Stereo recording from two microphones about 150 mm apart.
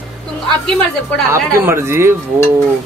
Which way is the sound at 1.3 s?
15° right (ahead or behind).